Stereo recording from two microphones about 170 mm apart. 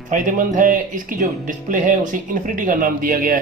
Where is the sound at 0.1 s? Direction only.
50° right (ahead or behind).